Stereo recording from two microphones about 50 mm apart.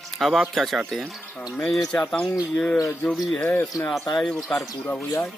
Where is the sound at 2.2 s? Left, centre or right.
Centre.